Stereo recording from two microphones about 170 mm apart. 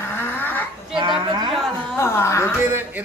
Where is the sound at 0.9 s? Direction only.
30° right (ahead or behind).